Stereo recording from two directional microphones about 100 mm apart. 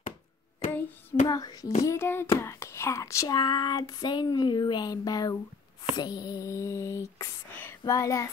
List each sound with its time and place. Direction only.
1.2 s whispering: 40° left (ahead or behind)